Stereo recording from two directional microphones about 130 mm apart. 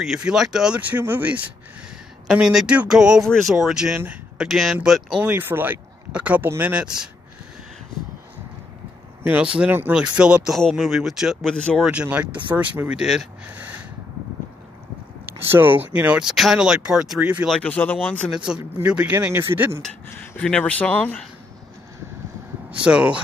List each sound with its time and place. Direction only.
0.0 s speech: 5° right (ahead or behind)
5.2 s speech: 15° right (ahead or behind)
9.2 s speech: 10° right (ahead or behind)
11.5 s speech: 5° left (ahead or behind)
11.8 s speech: 10° right (ahead or behind)
13.5 s snort: 15° right (ahead or behind)
15.5 s speech: 15° right (ahead or behind)
17.5 s speech: 10° left (ahead or behind)
18.3 s speech: 5° right (ahead or behind)
18.6 s speech: 20° right (ahead or behind)
19.8 s speech: 5° left (ahead or behind)
22.8 s speech: 10° right (ahead or behind)